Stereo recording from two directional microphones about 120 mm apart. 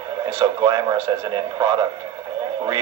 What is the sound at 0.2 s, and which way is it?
Speech, 35° right (ahead or behind).